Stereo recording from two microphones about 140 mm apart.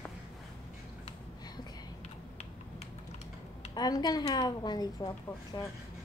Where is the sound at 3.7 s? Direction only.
30° left (ahead or behind).